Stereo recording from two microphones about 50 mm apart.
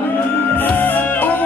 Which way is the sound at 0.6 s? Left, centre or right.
Left.